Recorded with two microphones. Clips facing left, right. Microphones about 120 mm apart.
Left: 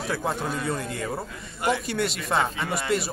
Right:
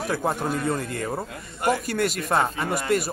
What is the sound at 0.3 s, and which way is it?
Speech, 10° right (ahead or behind).